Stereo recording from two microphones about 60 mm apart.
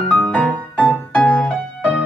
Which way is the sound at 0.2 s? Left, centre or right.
Centre.